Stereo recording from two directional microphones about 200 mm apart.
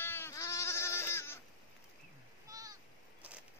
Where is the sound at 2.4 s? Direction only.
15° right (ahead or behind).